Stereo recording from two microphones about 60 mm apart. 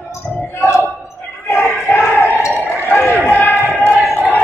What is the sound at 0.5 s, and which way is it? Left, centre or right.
Basketball bounce, left.